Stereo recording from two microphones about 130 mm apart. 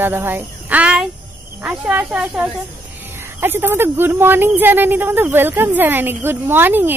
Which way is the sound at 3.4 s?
15° right (ahead or behind).